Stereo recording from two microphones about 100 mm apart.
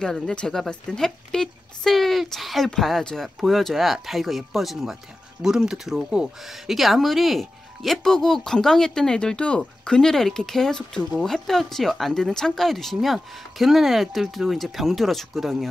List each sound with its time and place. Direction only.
0.0 s speech: 10° left (ahead or behind)